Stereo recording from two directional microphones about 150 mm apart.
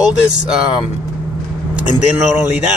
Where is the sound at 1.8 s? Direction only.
10° right (ahead or behind).